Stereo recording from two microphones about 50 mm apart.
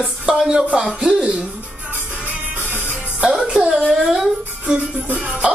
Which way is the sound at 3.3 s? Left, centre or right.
Centre.